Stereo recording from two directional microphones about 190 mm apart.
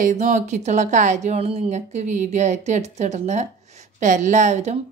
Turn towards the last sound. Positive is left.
turn(degrees=-35)  # may be behind; listen again after turning